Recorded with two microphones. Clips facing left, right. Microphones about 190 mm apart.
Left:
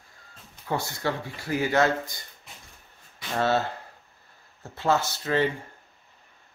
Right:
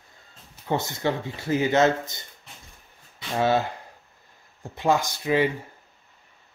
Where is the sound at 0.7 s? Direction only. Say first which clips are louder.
Right 3 dB; 20° right (ahead or behind).